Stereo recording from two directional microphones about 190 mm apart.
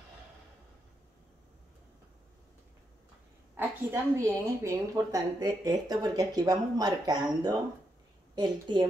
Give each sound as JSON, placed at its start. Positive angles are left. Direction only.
{"t": 3.5, "sound": "a woman's voice", "side_deg": -15}